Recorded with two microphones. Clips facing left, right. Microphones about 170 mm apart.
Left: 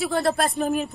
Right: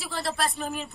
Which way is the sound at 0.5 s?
40° left (ahead or behind).